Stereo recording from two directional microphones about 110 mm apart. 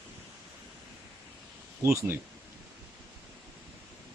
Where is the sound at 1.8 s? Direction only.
25° right (ahead or behind).